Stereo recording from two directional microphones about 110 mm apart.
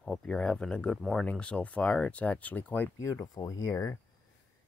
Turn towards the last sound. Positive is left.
turn(degrees=30)  # may be behind; listen again after turning